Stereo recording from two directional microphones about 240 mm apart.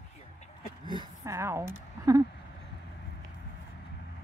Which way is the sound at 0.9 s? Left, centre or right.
Centre.